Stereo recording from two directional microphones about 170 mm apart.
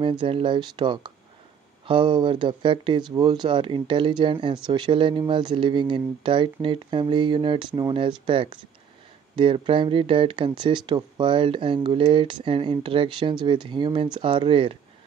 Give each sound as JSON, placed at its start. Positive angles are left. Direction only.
{"t": 0.2, "sound": "speech", "side_deg": -30}